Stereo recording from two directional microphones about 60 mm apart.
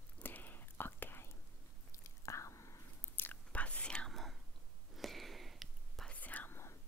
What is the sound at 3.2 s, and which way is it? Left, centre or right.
Chewing, left.